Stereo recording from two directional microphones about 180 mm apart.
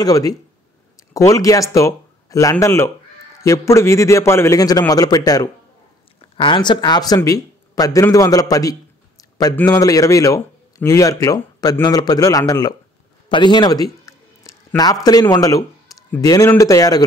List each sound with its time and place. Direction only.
0.0 s a man's voice: 20° left (ahead or behind)
13.3 s a sound: 25° left (ahead or behind)
15.0 s a man's voice: 20° left (ahead or behind)